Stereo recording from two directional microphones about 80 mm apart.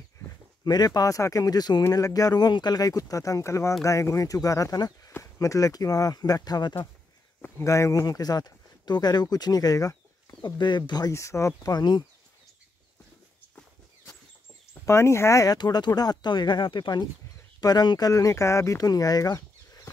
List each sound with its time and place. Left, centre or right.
0.7 s speech: left
1.9 s speech: left
7.6 s speech: left
8.0 s speech: left
10.4 s speech: left
11.1 s speech: left
11.7 s speech: left
14.7 s speech: left
15.5 s speech: left
17.6 s speech: left
18.1 s speech: left